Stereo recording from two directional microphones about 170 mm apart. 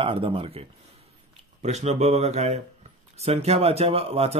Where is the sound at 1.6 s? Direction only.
40° right (ahead or behind).